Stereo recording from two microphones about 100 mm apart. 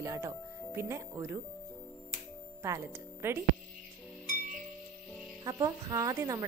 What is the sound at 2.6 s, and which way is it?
Speech, 30° right (ahead or behind).